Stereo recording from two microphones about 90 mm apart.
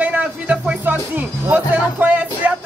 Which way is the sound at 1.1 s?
20° right (ahead or behind).